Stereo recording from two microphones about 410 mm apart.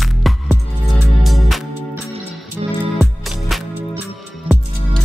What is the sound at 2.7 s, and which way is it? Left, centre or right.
Music, centre.